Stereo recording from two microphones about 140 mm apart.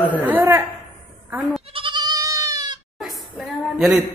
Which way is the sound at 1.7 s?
35° right (ahead or behind).